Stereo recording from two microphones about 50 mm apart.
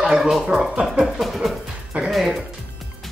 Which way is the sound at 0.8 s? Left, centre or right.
Centre.